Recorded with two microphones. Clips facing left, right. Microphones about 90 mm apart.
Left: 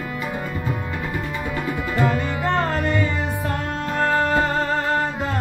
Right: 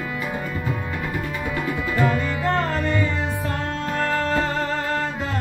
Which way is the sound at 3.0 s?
15° left (ahead or behind).